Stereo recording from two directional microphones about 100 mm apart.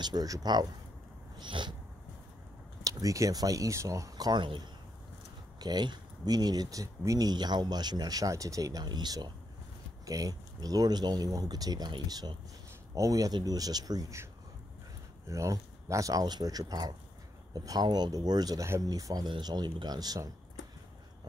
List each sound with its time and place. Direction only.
0.0 s speech: 40° right (ahead or behind)
2.8 s speech: 35° right (ahead or behind)
15.2 s speech: 30° right (ahead or behind)